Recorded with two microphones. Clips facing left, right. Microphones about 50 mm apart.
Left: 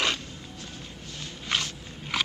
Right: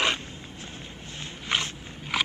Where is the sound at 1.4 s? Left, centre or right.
Right.